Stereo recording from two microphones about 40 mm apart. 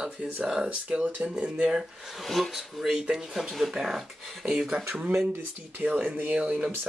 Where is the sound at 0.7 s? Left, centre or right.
Right.